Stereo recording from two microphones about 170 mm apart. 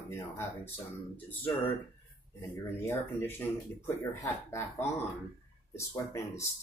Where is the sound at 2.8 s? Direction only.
15° left (ahead or behind).